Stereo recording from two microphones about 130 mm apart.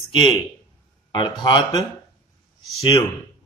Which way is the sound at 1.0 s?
35° left (ahead or behind).